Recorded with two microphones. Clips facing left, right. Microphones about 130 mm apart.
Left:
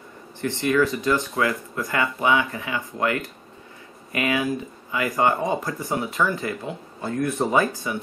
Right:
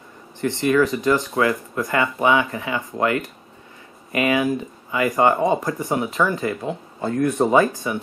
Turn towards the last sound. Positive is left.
turn(degrees=-20)  # may be behind; listen again after turning